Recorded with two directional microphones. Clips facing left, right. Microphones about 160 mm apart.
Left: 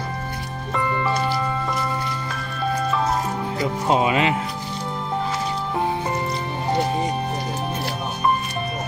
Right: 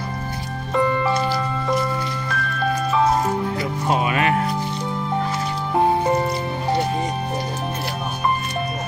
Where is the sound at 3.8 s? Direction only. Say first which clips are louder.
Left 1 dB; 20° left (ahead or behind).